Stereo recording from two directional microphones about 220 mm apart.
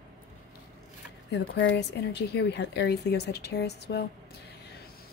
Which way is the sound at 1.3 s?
55° left (ahead or behind).